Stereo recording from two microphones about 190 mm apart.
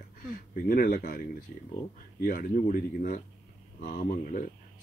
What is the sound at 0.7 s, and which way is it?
Speech, 45° left (ahead or behind).